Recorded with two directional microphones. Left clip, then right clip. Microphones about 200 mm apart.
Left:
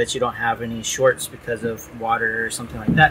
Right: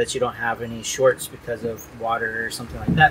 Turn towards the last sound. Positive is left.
turn(degrees=20)  # may be behind; listen again after turning